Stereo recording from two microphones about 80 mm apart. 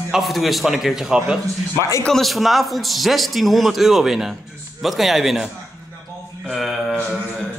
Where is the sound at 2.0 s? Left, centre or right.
Centre.